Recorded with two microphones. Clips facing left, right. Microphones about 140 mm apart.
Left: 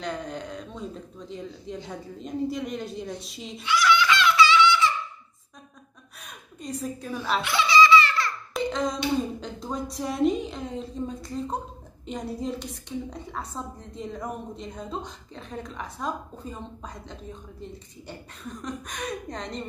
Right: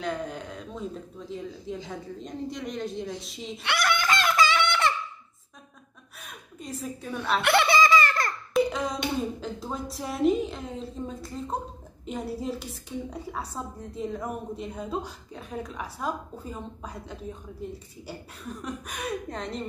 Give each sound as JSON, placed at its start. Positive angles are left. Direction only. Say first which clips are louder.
{"t": 0.0, "sound": "a woman's voice", "louder": "right 1 dB", "side_deg": -5}
{"t": 3.6, "sound": "a sound", "louder": "left 4 dB", "side_deg": -55}
{"t": 6.2, "sound": "a woman's voice", "louder": "left 3 dB", "side_deg": 0}
{"t": 7.4, "sound": "laughter", "louder": "left 1 dB", "side_deg": -60}
{"t": 8.5, "sound": "hands", "louder": "right 2 dB", "side_deg": -10}
{"t": 9.4, "sound": "a woman's voice", "louder": "left 1 dB", "side_deg": -5}